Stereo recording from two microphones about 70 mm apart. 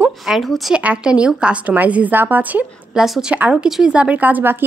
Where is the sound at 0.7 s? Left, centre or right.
Centre.